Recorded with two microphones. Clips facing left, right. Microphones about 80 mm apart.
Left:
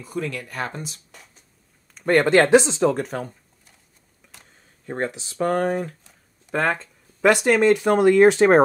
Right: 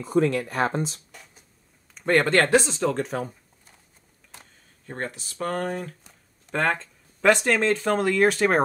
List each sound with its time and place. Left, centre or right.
0.0 s speech: right
2.0 s speech: centre
3.0 s speech: centre
4.9 s speech: centre
6.5 s speech: centre; by 8.6 s left